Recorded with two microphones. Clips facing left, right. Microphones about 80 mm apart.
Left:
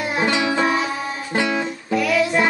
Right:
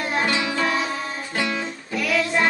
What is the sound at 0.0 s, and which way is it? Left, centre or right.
Music, centre.